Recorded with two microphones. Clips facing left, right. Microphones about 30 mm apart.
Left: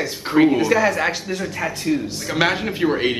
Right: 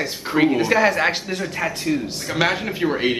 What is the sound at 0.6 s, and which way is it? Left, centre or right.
Speech, centre.